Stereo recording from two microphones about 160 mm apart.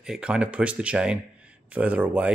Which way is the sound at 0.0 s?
5° right (ahead or behind).